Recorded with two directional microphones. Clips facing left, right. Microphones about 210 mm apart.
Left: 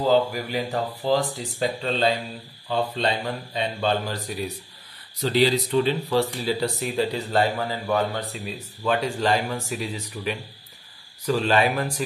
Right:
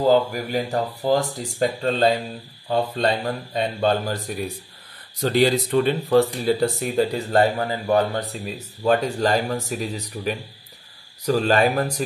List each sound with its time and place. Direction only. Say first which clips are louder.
0.0 s speech: right 2 dB; 50° right (ahead or behind)